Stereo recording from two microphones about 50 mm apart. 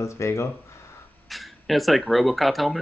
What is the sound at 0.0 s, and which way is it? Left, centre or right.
Speech, left.